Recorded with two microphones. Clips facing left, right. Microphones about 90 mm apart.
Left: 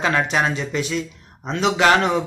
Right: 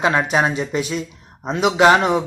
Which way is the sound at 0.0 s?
20° right (ahead or behind).